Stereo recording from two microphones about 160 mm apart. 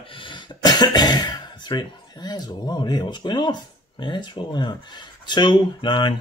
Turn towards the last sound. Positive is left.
turn(degrees=30)  # may be behind; listen again after turning